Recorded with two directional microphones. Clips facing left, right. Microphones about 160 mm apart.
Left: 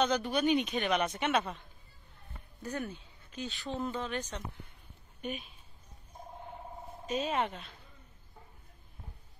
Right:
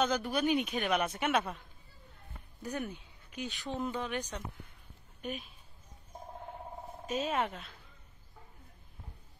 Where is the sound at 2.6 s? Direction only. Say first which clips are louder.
Even; 15° right (ahead or behind).